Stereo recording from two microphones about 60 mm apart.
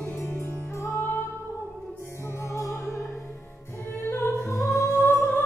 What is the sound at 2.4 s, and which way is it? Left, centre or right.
Music, left.